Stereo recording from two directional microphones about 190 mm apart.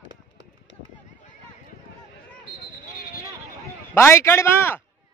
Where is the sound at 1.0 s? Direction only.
40° left (ahead or behind).